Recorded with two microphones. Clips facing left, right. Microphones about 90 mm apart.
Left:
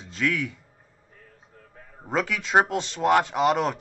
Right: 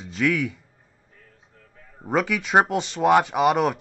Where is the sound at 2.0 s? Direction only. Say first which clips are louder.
Right 3 dB; 15° right (ahead or behind).